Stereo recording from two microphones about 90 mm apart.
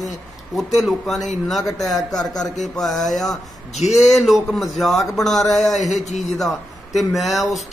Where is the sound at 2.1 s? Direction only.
45° left (ahead or behind).